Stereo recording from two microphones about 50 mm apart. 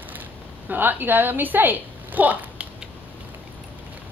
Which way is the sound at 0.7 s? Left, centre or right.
Right.